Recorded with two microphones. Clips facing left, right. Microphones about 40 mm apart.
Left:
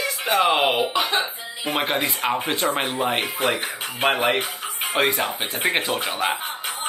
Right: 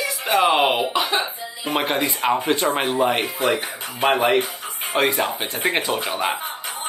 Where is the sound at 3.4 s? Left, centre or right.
Left.